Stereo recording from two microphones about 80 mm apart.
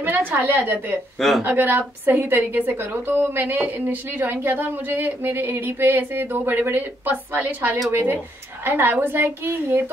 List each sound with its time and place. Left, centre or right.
0.0 s a woman's voice: right
1.1 s speech: centre
1.4 s a woman's voice: right